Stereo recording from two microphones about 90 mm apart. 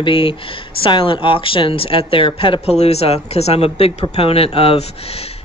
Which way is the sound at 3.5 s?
90° left.